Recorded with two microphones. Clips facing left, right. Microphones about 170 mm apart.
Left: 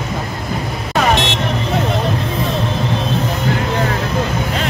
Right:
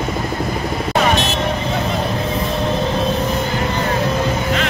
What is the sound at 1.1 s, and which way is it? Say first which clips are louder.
Vehicle: left 1 dB; 90° left.